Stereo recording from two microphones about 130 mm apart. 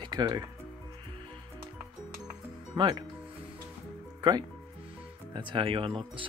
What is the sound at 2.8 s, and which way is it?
Speech, 35° right (ahead or behind).